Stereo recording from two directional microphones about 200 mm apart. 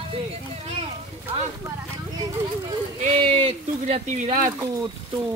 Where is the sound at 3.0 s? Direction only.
30° right (ahead or behind).